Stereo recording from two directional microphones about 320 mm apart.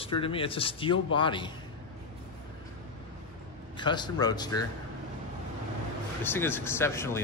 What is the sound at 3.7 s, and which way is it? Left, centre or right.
Speech, centre.